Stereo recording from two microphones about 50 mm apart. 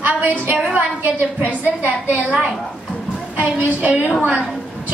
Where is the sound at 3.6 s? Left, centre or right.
Right.